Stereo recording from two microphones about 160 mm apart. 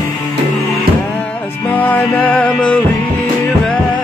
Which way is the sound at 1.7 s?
10° left (ahead or behind).